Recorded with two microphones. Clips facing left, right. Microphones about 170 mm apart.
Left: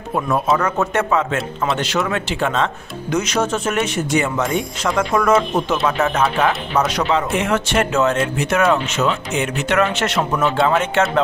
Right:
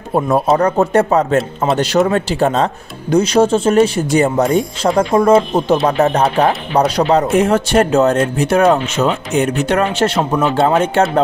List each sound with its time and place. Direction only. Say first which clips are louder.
0.1 s speech: right 5 dB; 35° right (ahead or behind)